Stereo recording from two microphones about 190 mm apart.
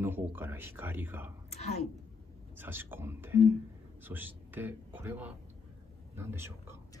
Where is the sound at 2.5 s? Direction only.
10° right (ahead or behind).